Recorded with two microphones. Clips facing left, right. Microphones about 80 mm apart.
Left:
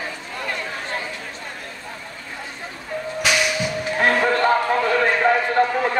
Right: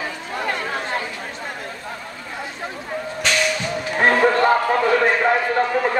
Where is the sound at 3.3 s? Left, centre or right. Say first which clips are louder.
Left 1 dB; centre.